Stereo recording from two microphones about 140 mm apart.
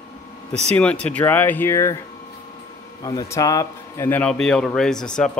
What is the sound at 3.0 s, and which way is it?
Speech, 25° left (ahead or behind).